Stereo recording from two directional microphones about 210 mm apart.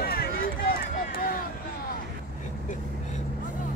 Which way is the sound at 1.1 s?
45° left (ahead or behind).